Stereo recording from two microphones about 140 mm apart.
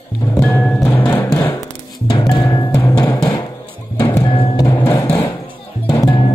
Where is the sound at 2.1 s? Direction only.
35° left (ahead or behind).